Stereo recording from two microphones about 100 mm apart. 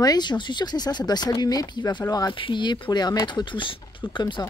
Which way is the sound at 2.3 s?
55° left (ahead or behind).